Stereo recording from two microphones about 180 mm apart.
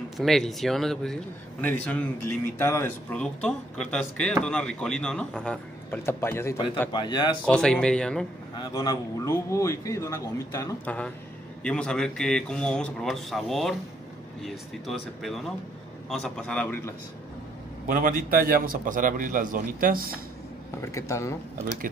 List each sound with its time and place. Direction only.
0.2 s speech: centre (ahead or behind)
6.9 s a man's voice: 25° left (ahead or behind)
7.4 s speech: 5° left (ahead or behind)
8.5 s a man's voice: 20° left (ahead or behind)
11.6 s speech: 5° left (ahead or behind)
17.8 s a man's voice: 45° right (ahead or behind)
20.8 s a man's voice: 15° left (ahead or behind)